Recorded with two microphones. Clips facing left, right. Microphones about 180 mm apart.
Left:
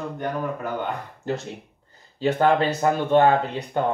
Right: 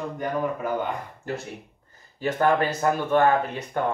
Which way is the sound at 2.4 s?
25° left (ahead or behind).